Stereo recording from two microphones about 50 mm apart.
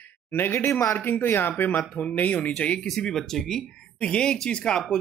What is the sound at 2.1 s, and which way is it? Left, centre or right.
Speech, left.